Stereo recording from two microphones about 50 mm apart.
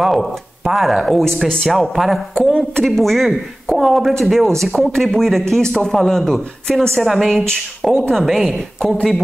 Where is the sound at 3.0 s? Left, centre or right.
Centre.